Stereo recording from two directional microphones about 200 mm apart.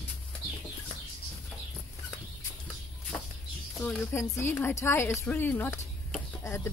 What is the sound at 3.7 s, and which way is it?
A woman's voice, 5° left (ahead or behind).